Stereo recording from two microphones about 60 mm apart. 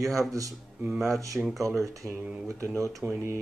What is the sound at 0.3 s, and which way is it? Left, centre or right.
Speech, right.